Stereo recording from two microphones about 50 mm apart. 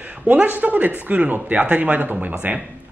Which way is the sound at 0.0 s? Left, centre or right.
Right.